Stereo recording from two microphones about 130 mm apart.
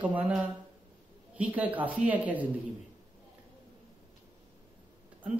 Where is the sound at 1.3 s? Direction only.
10° right (ahead or behind).